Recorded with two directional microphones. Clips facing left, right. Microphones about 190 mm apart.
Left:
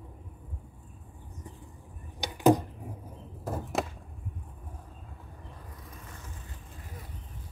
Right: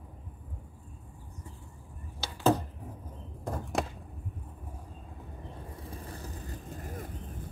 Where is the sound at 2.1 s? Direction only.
15° left (ahead or behind).